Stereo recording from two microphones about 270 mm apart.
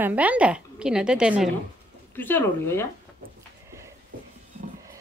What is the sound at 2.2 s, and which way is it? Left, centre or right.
Speech, centre.